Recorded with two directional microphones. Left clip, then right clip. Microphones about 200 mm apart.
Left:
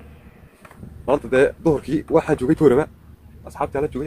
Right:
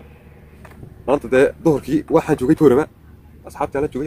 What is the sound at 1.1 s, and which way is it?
A man's voice, 25° right (ahead or behind).